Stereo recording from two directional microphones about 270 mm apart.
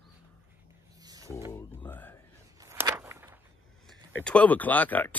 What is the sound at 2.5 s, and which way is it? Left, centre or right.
Walk, centre.